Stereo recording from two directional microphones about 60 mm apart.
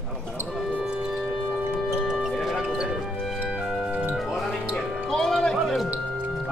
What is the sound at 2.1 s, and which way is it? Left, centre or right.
Music, centre.